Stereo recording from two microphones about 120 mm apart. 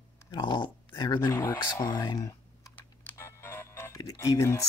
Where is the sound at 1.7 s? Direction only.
30° left (ahead or behind).